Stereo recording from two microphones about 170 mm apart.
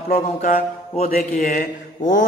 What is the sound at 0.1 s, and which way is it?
A man's voice, 55° left (ahead or behind).